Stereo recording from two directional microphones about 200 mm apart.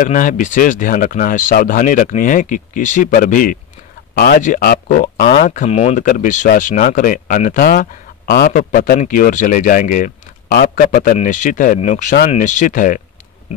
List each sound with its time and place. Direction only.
0.0 s speech: 40° left (ahead or behind)